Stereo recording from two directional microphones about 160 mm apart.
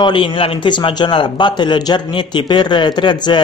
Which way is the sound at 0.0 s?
30° left (ahead or behind).